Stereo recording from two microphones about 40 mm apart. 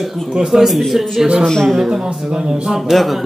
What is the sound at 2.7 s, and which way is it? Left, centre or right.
Speech, centre.